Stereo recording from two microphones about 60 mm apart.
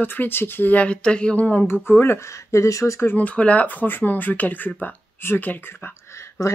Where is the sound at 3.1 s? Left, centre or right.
Left.